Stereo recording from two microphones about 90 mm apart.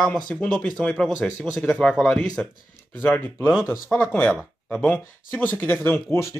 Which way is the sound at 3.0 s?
25° left (ahead or behind).